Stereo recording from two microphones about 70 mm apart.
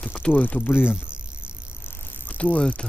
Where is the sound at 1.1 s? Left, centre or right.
Centre.